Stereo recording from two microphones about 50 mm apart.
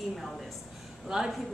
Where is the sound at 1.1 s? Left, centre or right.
Centre.